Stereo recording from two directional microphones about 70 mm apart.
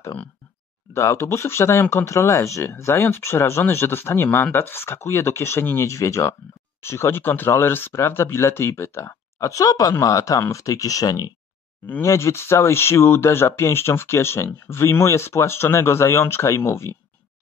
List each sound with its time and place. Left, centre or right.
0.9 s speech: left
9.0 s speech: left
12.0 s speech: left